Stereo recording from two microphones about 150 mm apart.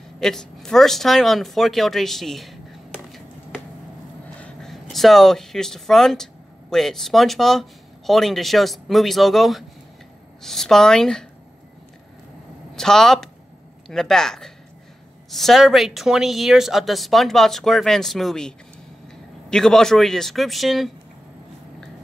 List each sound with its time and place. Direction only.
0.2 s a woman's voice: 5° left (ahead or behind)
4.4 s a woman's voice: 5° left (ahead or behind)
12.7 s a woman's voice: 5° left (ahead or behind)
19.5 s a woman's voice: 5° left (ahead or behind)